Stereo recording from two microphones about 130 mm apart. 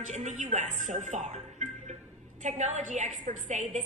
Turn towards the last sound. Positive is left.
turn(degrees=-70)  # may be behind; listen again after turning